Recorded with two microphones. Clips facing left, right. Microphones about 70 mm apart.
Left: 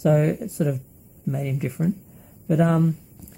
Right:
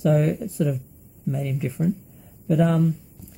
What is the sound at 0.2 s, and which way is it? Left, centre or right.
Speech, left.